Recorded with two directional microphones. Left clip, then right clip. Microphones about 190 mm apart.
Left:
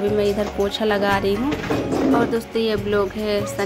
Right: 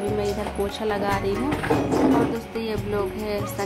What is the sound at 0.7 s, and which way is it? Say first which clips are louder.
Speech: left 6 dB; 20° left (ahead or behind).